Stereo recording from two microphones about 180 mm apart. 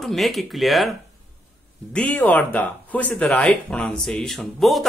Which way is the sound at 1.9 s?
5° left (ahead or behind).